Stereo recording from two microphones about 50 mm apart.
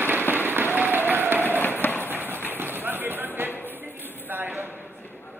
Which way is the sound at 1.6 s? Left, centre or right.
Left.